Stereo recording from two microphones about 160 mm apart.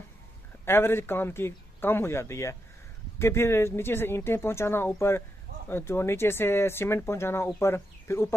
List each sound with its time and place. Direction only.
0.7 s speech: 15° left (ahead or behind)